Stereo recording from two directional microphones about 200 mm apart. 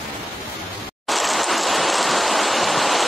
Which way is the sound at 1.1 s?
Centre (ahead or behind).